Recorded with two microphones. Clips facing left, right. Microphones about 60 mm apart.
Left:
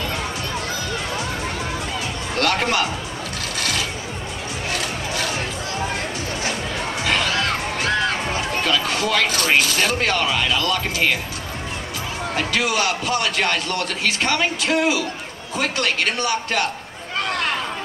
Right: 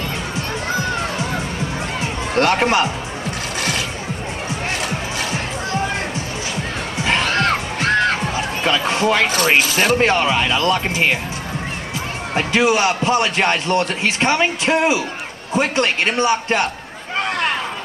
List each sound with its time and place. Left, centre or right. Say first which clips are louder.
2.0 s music: right 7 dB; right
7.2 s music: right 4 dB; right
8.6 s speech: right 6 dB; right
9.6 s speech: right 4 dB; centre
9.9 s speech: right 5 dB; right
12.4 s speech: right 6 dB; right